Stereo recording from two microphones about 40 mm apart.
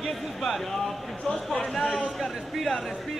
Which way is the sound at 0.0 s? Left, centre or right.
Centre.